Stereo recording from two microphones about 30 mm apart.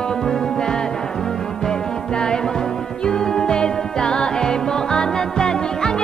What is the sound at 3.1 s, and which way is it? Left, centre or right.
Music, left.